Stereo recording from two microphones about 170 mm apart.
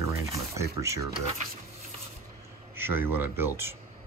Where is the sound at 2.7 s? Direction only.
15° right (ahead or behind).